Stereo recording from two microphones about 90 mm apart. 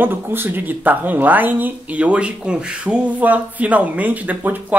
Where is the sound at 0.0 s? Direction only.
25° right (ahead or behind).